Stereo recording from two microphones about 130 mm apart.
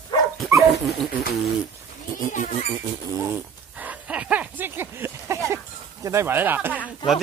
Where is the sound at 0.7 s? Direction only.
Centre (ahead or behind).